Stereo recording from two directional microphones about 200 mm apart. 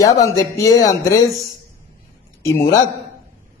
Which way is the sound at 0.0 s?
15° left (ahead or behind).